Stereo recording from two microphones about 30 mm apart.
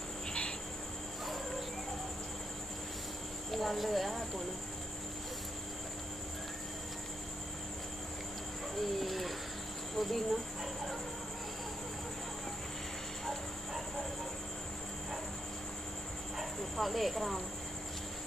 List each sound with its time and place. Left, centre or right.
0.3 s cricket: left
3.5 s speech: centre
8.8 s bird: centre
9.9 s speech: centre
16.3 s dog: centre